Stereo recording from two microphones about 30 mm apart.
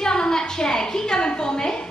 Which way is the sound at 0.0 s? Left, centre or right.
Left.